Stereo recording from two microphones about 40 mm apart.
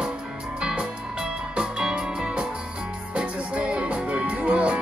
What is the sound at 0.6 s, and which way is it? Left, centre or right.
Music, right.